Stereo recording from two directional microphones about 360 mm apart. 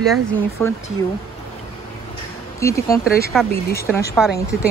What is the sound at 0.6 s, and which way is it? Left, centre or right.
Speech, centre.